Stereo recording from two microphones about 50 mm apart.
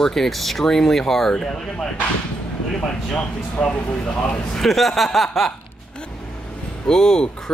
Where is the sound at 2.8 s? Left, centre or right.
Left.